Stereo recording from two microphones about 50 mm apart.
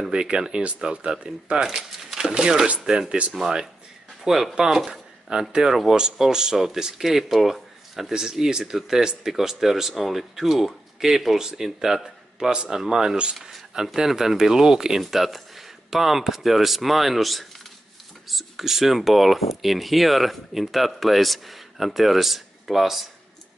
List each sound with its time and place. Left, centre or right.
0.1 s speech: centre
4.2 s speech: centre